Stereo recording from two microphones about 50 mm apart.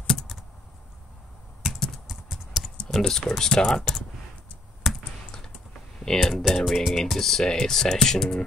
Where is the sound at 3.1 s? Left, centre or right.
Centre.